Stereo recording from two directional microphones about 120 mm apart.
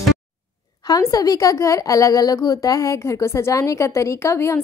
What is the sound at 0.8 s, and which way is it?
A woman's voice, 30° left (ahead or behind).